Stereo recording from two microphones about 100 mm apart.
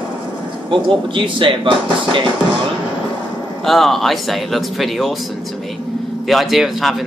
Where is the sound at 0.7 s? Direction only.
55° right (ahead or behind).